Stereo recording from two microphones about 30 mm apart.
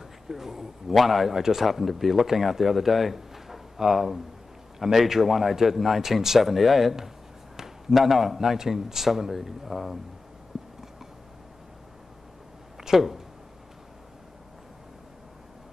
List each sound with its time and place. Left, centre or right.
0.0 s a man's voice: centre
1.3 s speech: centre
10.5 s a sound: centre
12.9 s speech: centre